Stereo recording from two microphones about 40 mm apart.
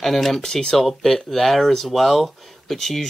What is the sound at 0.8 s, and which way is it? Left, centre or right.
Speech, centre.